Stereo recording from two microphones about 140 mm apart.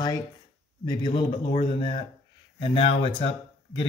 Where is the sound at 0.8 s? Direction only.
35° left (ahead or behind).